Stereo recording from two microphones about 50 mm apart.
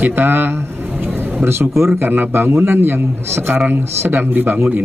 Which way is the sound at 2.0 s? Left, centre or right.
Right.